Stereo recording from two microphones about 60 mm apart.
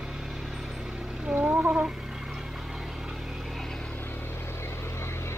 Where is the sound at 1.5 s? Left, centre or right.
Right.